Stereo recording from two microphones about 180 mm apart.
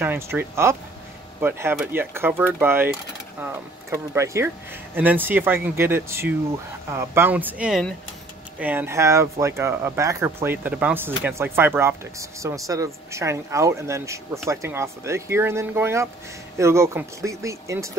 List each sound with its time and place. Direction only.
0.0 s speech: 10° right (ahead or behind)